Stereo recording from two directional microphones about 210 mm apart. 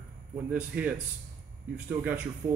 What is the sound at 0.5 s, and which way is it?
Speech, 5° right (ahead or behind).